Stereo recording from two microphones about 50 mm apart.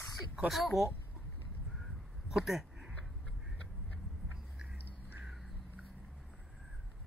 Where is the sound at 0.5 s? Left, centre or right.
Centre.